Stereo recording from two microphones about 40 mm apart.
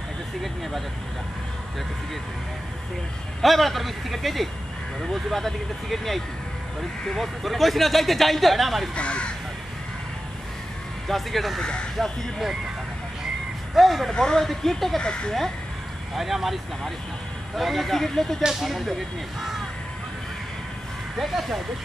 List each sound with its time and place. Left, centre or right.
3.4 s a man's voice: centre
8.9 s speech: left
11.1 s a man's voice: centre
11.6 s speech: left
13.7 s speech: centre
14.1 s speech: centre
15.0 s speech: centre
16.2 s a man's voice: centre
18.5 s a man's voice: centre
21.2 s a man's voice: centre